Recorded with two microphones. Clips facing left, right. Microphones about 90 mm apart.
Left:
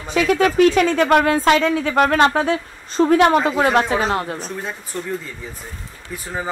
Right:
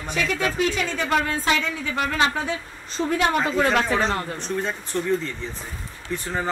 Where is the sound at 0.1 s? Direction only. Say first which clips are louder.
Left 8 dB; 60° left (ahead or behind).